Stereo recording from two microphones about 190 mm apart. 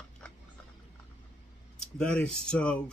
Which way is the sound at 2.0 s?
5° left (ahead or behind).